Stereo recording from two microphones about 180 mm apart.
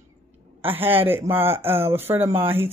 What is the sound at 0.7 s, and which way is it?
Speech, 10° right (ahead or behind).